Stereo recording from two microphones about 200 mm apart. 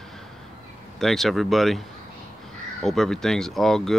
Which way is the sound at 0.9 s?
Centre (ahead or behind).